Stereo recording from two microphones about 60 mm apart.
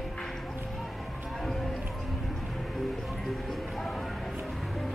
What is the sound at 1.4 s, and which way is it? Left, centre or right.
Run, centre.